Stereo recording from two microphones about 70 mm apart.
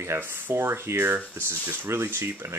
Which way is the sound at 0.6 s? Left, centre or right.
Right.